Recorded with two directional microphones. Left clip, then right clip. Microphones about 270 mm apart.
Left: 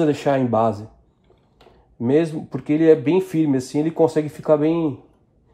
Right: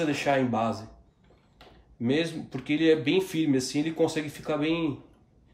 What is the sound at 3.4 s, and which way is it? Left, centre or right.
Speech, centre.